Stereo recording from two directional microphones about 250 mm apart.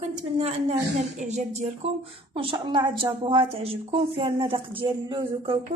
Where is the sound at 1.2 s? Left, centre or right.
Right.